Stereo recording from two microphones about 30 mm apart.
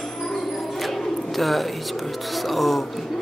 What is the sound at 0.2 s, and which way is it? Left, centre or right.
Music, centre.